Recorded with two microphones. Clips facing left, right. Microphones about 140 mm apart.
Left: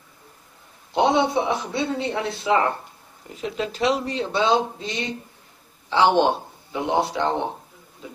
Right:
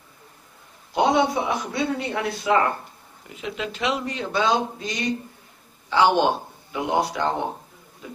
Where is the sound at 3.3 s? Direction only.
35° left (ahead or behind).